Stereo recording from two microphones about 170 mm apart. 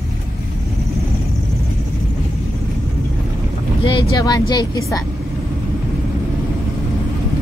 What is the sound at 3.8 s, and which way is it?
Speech, 30° left (ahead or behind).